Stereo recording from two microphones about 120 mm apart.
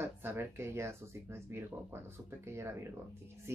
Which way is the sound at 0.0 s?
20° right (ahead or behind).